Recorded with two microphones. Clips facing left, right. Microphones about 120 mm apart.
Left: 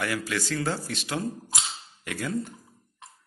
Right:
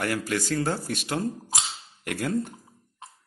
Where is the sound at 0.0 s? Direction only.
45° right (ahead or behind).